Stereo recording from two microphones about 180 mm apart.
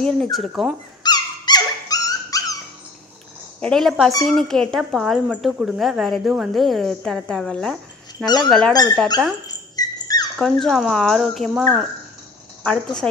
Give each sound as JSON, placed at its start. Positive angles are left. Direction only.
{"t": 0.0, "sound": "speech", "side_deg": 0}
{"t": 1.0, "sound": "dog", "side_deg": 20}
{"t": 3.6, "sound": "speech", "side_deg": 0}
{"t": 9.8, "sound": "dog", "side_deg": 20}
{"t": 10.4, "sound": "speech", "side_deg": 5}